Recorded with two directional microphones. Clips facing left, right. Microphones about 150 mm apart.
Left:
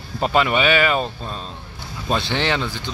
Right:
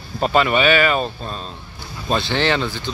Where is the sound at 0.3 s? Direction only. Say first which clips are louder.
Right 2 dB; 15° left (ahead or behind).